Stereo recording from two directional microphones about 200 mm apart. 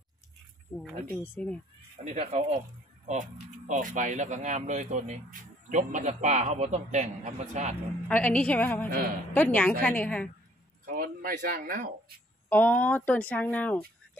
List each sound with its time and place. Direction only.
1.1 s speech: 10° left (ahead or behind)
2.0 s speech: 30° right (ahead or behind)
8.1 s speech: 5° left (ahead or behind)
10.9 s speech: 45° right (ahead or behind)
12.4 s speech: 10° left (ahead or behind)